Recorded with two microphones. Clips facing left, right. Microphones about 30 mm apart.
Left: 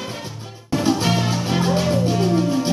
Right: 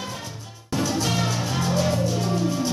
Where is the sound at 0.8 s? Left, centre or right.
Left.